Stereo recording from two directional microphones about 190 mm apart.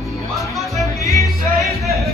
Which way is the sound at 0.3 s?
Centre (ahead or behind).